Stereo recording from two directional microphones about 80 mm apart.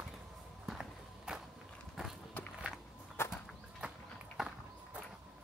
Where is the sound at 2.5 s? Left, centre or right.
Centre.